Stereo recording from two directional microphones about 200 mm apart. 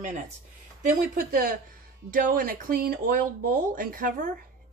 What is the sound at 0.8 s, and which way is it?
Speech, 45° right (ahead or behind).